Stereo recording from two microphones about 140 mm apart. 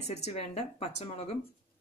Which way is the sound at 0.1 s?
50° left (ahead or behind).